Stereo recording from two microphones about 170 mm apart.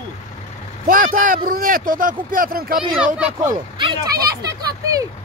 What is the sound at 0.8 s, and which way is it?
Speech, 55° right (ahead or behind).